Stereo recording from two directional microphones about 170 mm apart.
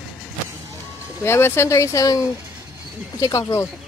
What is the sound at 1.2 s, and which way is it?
Speech, 15° left (ahead or behind).